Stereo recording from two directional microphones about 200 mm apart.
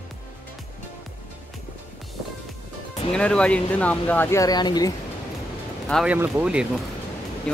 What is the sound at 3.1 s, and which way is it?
Speech, 5° left (ahead or behind).